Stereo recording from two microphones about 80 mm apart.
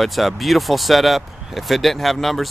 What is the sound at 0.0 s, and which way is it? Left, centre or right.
Speech, centre.